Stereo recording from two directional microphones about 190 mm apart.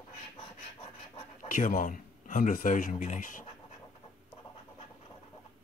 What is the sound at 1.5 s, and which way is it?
Speech, 45° left (ahead or behind).